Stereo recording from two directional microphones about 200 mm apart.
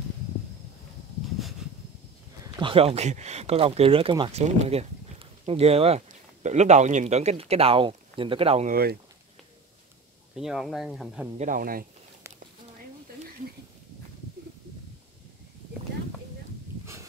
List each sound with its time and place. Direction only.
1.6 s a sound: 5° right (ahead or behind)
2.4 s speech: 25° right (ahead or behind)
10.3 s speech: centre (ahead or behind)
11.3 s speech: 40° right (ahead or behind)